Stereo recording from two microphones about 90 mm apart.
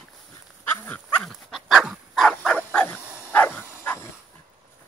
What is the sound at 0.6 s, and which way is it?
Dog, 20° left (ahead or behind).